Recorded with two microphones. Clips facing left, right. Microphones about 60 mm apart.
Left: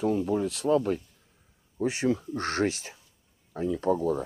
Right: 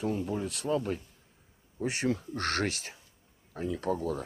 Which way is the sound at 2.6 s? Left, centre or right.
Right.